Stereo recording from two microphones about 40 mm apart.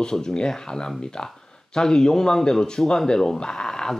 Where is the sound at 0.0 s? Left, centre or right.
Centre.